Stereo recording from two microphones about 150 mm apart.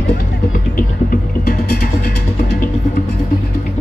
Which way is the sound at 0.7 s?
75° left (ahead or behind).